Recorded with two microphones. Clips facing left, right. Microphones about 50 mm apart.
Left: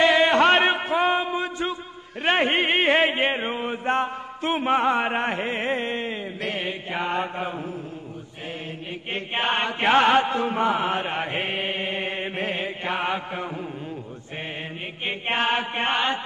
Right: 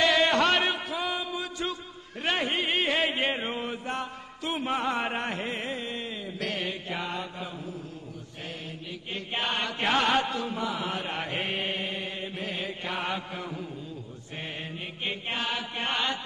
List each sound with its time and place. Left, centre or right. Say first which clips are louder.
0.0 s a sound: left 5 dB; left
2.4 s chant: left 7 dB; left
3.8 s chant: left 10 dB; left
6.4 s mantra: left 2 dB; left
9.1 s chant: left 6 dB; left
11.9 s mantra: left 7 dB; left
15.2 s chant: left 11 dB; left